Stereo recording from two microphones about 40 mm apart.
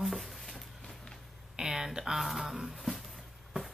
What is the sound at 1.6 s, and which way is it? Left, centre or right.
Speech, centre.